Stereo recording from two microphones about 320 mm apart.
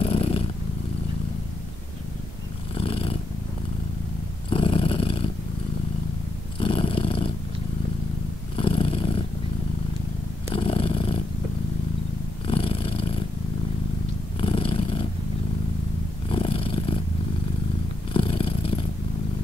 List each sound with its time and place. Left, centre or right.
0.0 s purr: centre
2.7 s purr: centre
4.5 s purr: centre
6.6 s purr: centre
8.5 s purr: centre
10.5 s purr: centre
12.4 s purr: centre
14.4 s purr: centre
16.3 s purr: centre
18.1 s purr: centre